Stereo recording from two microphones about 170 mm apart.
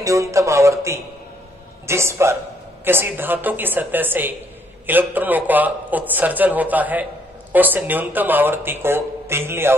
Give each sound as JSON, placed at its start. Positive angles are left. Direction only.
{"t": 0.0, "sound": "speech", "side_deg": -20}